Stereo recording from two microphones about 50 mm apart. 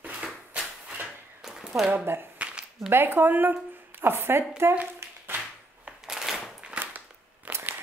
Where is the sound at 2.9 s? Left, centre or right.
Right.